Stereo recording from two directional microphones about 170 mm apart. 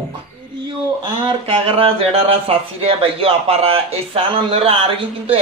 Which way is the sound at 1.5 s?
35° right (ahead or behind).